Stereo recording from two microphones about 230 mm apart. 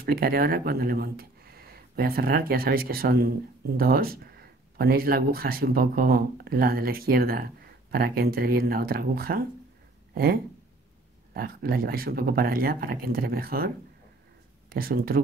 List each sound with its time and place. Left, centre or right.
0.0 s speech: right
14.7 s speech: right